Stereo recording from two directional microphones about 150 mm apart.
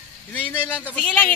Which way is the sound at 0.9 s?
10° left (ahead or behind).